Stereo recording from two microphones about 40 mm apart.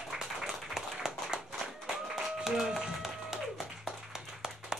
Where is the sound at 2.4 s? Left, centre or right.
Centre.